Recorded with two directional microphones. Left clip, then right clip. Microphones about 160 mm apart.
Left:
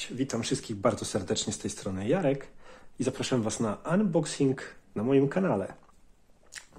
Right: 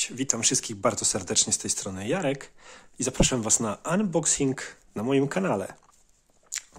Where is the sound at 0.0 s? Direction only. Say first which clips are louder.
Right 5 dB; 40° right (ahead or behind).